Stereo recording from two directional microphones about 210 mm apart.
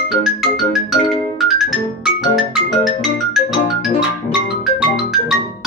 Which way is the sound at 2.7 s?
35° left (ahead or behind).